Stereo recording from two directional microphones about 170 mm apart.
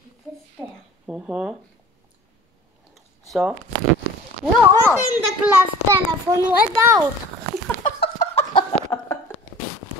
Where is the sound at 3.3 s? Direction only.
Centre (ahead or behind).